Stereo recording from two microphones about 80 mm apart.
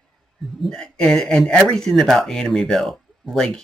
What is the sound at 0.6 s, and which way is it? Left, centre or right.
Speech, centre.